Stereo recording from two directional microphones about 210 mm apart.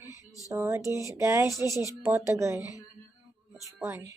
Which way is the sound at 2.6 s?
15° left (ahead or behind).